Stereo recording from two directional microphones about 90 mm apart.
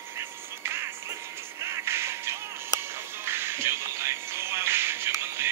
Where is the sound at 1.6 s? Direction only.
30° right (ahead or behind).